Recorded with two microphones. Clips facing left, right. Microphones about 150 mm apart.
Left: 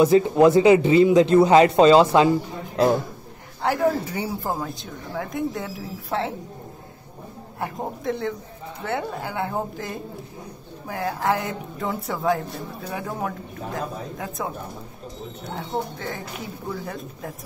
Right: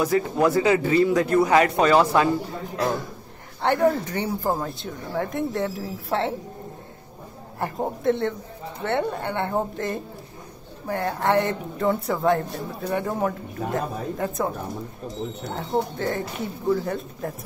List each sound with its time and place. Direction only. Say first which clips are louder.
0.0 s a man's voice: left 6 dB; 20° left (ahead or behind)
3.6 s speech: right 1 dB; 5° left (ahead or behind)
7.6 s speech: right 4 dB; centre (ahead or behind)
15.5 s speech: right 3 dB; centre (ahead or behind)